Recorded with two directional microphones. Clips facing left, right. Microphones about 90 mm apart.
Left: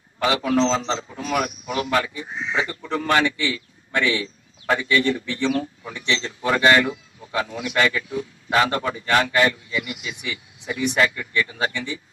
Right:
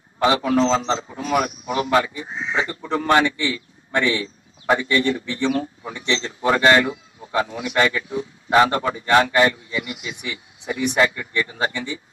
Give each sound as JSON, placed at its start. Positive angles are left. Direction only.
{"t": 0.2, "sound": "a man's voice", "side_deg": -25}